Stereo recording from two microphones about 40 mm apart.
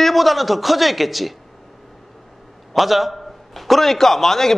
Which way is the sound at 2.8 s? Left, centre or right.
Centre.